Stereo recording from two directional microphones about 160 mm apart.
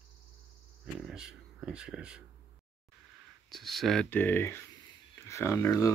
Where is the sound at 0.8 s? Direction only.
5° right (ahead or behind).